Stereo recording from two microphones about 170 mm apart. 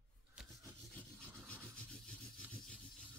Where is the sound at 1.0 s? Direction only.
5° left (ahead or behind).